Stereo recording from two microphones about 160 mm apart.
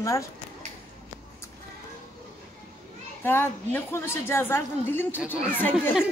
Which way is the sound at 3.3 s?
15° left (ahead or behind).